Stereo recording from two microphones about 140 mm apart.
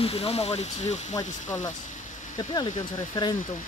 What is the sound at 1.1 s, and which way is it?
Speech, 25° left (ahead or behind).